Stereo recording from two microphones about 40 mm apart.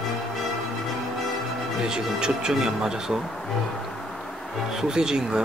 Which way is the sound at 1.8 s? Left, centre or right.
Centre.